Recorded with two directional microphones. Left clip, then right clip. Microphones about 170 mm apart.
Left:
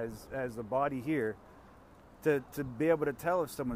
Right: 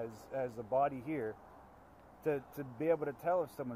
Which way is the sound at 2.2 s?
55° left (ahead or behind).